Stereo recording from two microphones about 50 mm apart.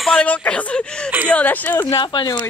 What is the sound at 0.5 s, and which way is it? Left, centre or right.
Speech, left.